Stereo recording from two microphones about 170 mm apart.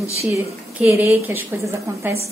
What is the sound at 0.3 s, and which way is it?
A woman's voice, 15° right (ahead or behind).